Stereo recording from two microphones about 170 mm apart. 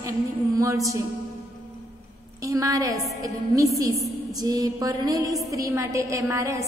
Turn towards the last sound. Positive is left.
turn(degrees=-20)  # may be behind; listen again after turning